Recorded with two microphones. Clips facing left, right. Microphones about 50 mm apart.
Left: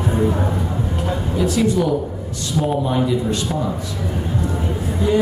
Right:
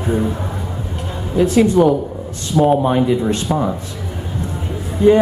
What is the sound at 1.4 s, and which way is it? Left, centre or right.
A man's voice, right.